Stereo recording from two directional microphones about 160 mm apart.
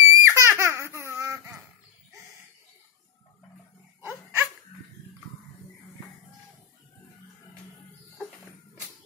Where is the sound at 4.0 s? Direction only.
15° right (ahead or behind).